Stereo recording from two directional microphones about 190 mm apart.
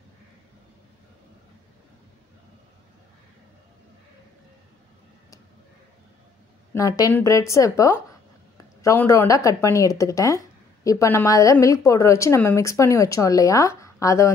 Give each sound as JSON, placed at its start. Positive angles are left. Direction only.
{"t": 6.7, "sound": "speech", "side_deg": 15}